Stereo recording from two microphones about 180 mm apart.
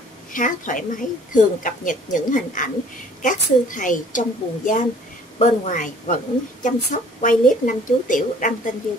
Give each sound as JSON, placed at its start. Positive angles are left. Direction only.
{"t": 0.3, "sound": "a woman's voice", "side_deg": 45}